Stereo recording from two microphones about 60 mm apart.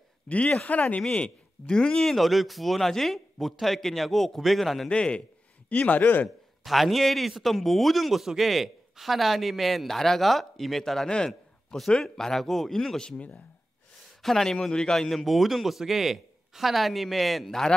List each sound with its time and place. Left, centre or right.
0.3 s speech: centre
1.0 s speech: centre
4.8 s a man's voice: centre
5.7 s speech: left
6.2 s a man's voice: centre
14.2 s speech: centre